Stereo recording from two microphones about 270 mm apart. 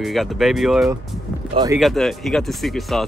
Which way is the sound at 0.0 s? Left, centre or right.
Centre.